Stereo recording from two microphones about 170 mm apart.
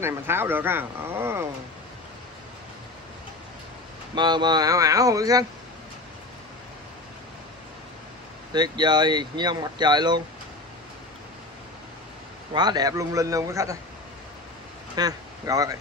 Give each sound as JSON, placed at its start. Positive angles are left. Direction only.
{"t": 0.0, "sound": "speech", "side_deg": -15}
{"t": 4.1, "sound": "speech", "side_deg": -25}
{"t": 8.5, "sound": "speech", "side_deg": -25}
{"t": 12.5, "sound": "speech", "side_deg": -25}
{"t": 15.0, "sound": "speech", "side_deg": -20}